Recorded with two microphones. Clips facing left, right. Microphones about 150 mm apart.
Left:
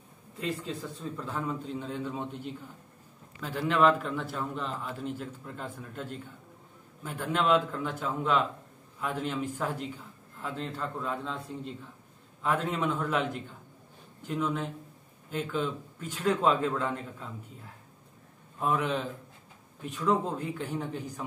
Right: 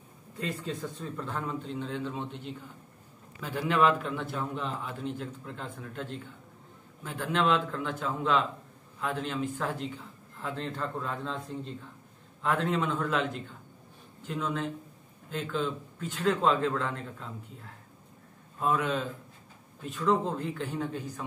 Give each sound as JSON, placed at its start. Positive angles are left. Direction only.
{"t": 0.4, "sound": "a man's voice", "side_deg": 0}
{"t": 3.3, "sound": "a man's voice", "side_deg": -5}
{"t": 18.6, "sound": "a man's voice", "side_deg": 15}